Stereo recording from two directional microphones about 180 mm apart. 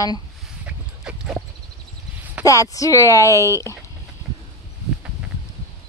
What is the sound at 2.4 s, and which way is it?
Speech, 20° left (ahead or behind).